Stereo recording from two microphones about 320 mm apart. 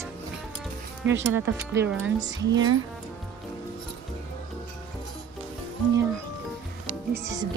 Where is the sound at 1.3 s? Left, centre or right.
Centre.